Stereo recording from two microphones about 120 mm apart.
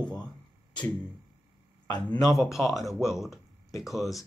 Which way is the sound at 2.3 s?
Centre (ahead or behind).